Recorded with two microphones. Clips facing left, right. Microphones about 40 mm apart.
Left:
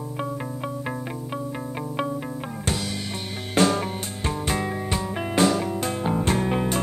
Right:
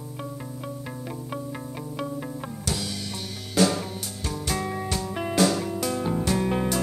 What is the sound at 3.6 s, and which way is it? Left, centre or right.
Music, left.